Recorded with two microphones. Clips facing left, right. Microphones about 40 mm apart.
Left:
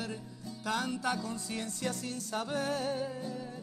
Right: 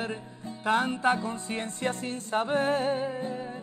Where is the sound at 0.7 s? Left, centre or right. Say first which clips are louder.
Right 8 dB; right.